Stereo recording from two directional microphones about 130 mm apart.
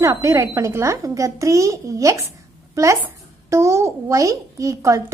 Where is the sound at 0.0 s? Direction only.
25° right (ahead or behind).